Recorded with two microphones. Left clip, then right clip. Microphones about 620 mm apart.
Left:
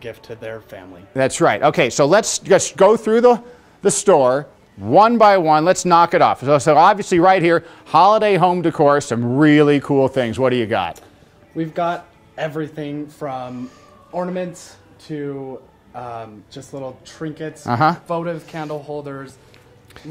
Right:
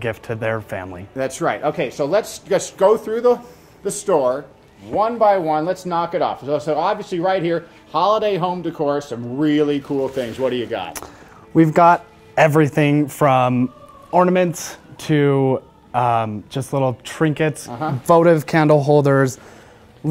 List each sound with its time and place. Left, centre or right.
0.0 s speech: right
1.1 s speech: left
5.3 s speech: left
11.5 s speech: right
15.0 s speech: right
15.9 s speech: right